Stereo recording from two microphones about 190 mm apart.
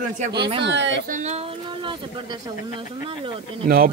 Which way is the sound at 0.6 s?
70° right (ahead or behind).